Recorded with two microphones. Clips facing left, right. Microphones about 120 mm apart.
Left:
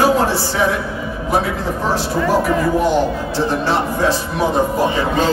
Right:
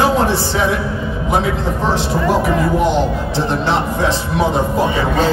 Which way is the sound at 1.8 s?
20° right (ahead or behind).